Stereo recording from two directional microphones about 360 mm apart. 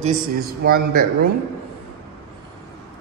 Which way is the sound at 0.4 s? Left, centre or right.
Right.